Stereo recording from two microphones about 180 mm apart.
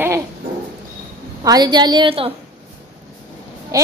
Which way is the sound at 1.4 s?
20° right (ahead or behind).